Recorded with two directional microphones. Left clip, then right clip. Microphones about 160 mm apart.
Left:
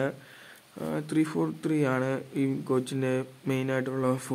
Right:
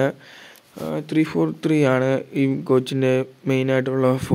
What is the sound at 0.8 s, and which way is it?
Speech, 20° right (ahead or behind).